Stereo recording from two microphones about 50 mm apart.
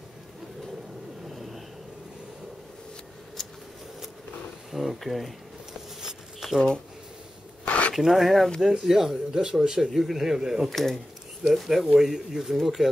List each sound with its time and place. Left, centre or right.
1.3 s vehicle: centre
4.7 s speech: centre
5.9 s a sound: centre
7.6 s a sound: left
7.9 s speech: centre
9.9 s speech: centre
10.7 s speech: centre